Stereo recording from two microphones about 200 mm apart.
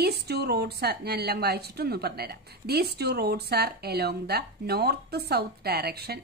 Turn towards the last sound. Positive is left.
turn(degrees=-50)  # may be behind; listen again after turning